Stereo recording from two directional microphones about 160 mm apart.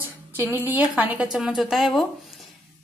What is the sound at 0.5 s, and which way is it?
A woman's voice, 15° right (ahead or behind).